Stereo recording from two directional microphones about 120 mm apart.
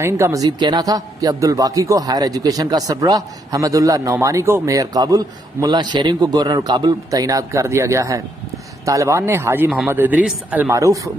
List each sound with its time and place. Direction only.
0.0 s a man's voice: 25° right (ahead or behind)
10.7 s a man's voice: 25° right (ahead or behind)